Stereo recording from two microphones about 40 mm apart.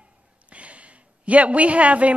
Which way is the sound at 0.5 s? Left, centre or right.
Right.